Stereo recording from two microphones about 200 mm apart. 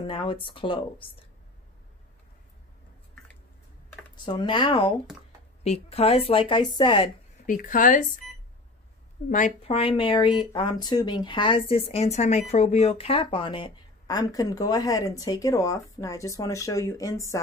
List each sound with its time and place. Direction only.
0.0 s speech: 25° left (ahead or behind)
4.2 s speech: 25° left (ahead or behind)
7.4 s speech: 40° left (ahead or behind)
9.3 s speech: 40° left (ahead or behind)
9.7 s speech: 25° left (ahead or behind)